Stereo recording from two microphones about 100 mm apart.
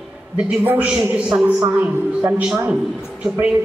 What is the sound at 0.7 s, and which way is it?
A woman's voice, 15° right (ahead or behind).